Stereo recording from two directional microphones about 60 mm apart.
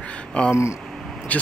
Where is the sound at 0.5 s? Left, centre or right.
Left.